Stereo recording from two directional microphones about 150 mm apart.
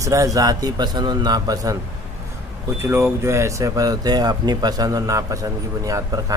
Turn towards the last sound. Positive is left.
turn(degrees=-25)  # may be behind; listen again after turning